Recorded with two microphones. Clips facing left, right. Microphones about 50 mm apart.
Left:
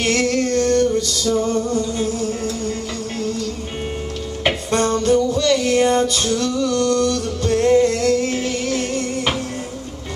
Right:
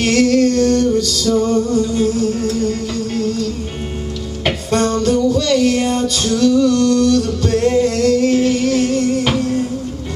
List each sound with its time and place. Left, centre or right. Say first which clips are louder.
0.0 s music: right 6 dB; centre
4.5 s music: right 2 dB; centre